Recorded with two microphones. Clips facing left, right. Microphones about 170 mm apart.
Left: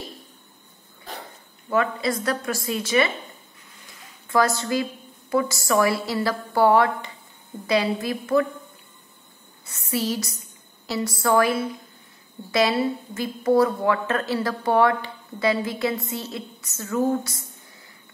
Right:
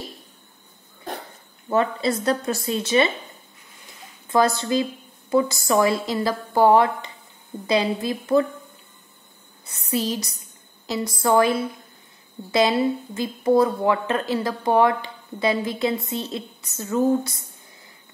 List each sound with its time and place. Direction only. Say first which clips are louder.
1.7 s a woman's voice: right 2 dB; 25° right (ahead or behind)
4.3 s a woman's voice: right 2 dB; 20° right (ahead or behind)
9.7 s a woman's voice: right 1 dB; 20° right (ahead or behind)